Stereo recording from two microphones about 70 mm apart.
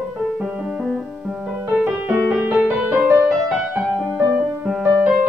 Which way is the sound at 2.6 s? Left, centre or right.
Right.